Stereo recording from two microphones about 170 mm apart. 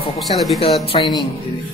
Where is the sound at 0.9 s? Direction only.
30° left (ahead or behind).